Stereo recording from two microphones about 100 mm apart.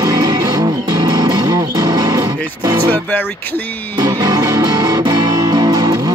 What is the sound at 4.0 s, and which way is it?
Music, 40° right (ahead or behind).